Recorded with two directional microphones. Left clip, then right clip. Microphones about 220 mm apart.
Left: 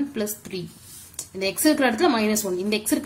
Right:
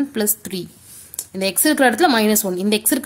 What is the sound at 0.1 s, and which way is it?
A woman's voice, 45° right (ahead or behind).